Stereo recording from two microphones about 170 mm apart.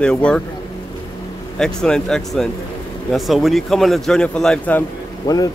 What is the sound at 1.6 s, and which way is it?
Speech, 5° left (ahead or behind).